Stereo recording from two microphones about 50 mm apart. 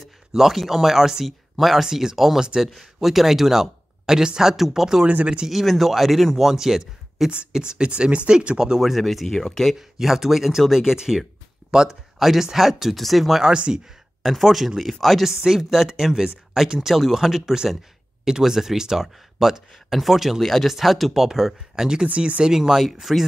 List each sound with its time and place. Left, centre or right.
0.3 s speech: centre
2.4 s speech: centre
2.7 s speech: centre
5.0 s speech: right
5.5 s speech: centre
9.8 s speech: centre
13.4 s speech: centre
14.2 s speech: centre
22.1 s speech: right
22.4 s speech: centre